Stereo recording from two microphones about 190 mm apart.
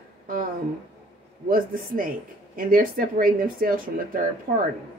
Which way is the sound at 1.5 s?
45° right (ahead or behind).